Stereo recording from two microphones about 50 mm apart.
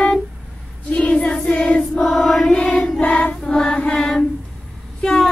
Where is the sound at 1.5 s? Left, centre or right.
Left.